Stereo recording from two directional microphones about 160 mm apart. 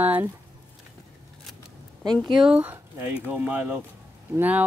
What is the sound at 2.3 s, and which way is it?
Speech, 5° right (ahead or behind).